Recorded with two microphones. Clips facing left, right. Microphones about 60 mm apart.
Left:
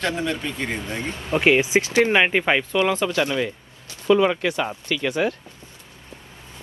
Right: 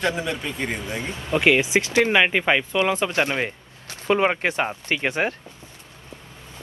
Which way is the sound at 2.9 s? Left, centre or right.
Right.